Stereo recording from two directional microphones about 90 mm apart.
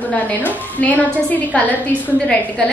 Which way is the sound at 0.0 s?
20° left (ahead or behind).